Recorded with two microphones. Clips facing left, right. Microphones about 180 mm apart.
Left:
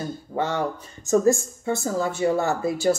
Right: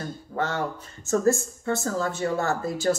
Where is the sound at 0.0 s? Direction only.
15° left (ahead or behind).